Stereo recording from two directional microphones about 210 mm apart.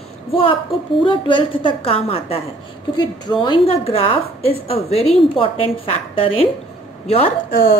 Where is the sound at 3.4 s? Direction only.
25° left (ahead or behind).